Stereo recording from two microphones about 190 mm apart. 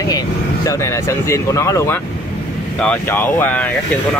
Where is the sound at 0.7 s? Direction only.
15° left (ahead or behind).